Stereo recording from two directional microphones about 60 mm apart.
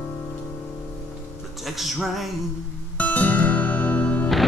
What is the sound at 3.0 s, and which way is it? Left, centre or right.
Music, left.